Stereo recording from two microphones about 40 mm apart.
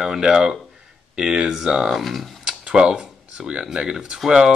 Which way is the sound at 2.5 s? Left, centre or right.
Right.